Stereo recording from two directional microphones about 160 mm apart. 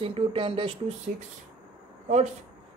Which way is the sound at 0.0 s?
35° right (ahead or behind).